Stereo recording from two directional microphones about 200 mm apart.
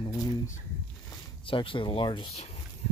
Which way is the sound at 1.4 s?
25° left (ahead or behind).